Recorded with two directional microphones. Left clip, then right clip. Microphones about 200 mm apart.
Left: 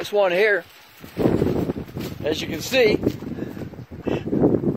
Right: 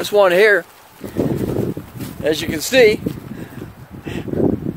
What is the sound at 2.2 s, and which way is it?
Speech, centre (ahead or behind).